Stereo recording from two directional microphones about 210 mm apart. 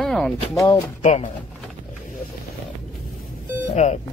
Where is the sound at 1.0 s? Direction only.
35° left (ahead or behind).